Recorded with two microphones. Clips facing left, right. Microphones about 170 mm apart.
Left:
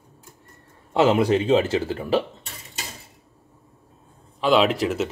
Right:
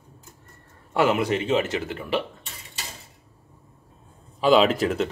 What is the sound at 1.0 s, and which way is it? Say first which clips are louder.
A man's voice: left 4 dB; 30° left (ahead or behind).